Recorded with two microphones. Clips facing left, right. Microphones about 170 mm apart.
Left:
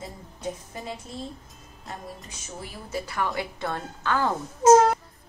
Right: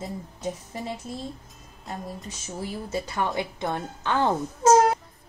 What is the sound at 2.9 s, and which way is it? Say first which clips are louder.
A woman's voice: even; 25° right (ahead or behind).